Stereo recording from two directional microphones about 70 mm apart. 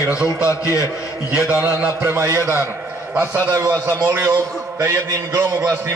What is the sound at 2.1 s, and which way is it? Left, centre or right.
Speech, right.